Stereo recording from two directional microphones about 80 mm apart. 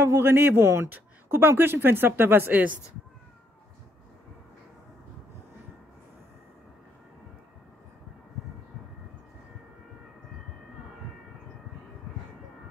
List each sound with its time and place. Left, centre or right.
0.0 s speech: right